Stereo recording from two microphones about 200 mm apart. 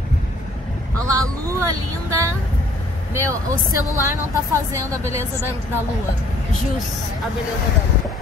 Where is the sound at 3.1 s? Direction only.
15° right (ahead or behind).